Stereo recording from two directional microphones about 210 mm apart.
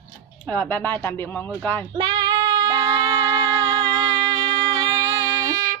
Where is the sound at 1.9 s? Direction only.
20° right (ahead or behind).